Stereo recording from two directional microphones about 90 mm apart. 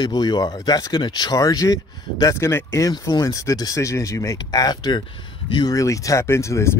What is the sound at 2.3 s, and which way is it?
Speech, 30° left (ahead or behind).